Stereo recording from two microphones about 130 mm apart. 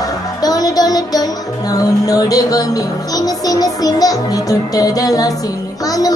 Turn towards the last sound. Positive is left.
turn(degrees=30)  # may be behind; listen again after turning